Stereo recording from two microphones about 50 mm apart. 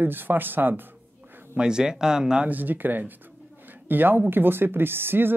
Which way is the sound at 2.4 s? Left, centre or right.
Right.